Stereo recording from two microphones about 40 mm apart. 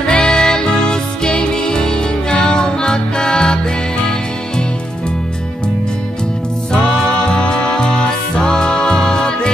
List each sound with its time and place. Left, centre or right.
0.0 s music: left
6.7 s music: centre